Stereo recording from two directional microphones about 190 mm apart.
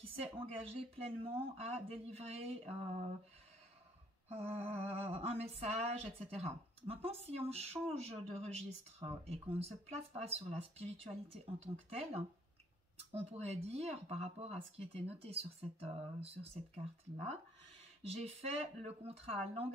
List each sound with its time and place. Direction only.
0.0 s speech: 30° right (ahead or behind)
4.3 s speech: 35° right (ahead or behind)